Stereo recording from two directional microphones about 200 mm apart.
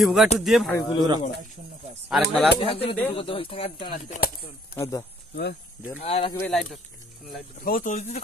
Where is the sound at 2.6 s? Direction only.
30° left (ahead or behind).